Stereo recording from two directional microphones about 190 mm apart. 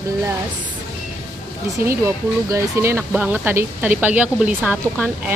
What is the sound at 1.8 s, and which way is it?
Speech, 15° right (ahead or behind).